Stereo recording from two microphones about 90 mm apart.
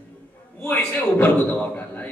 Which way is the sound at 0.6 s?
20° left (ahead or behind).